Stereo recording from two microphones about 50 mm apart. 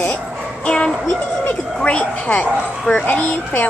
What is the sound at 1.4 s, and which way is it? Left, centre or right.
Speech, left.